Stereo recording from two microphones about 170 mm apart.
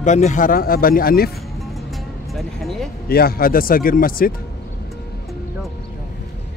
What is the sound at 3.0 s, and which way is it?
Speech, 65° left (ahead or behind).